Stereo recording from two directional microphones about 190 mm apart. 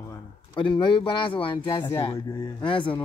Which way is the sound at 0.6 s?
25° left (ahead or behind).